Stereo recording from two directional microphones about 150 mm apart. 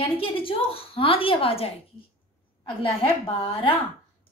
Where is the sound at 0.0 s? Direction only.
40° left (ahead or behind).